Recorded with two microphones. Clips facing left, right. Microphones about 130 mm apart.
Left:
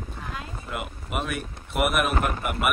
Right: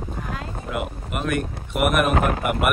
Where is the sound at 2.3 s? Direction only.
55° right (ahead or behind).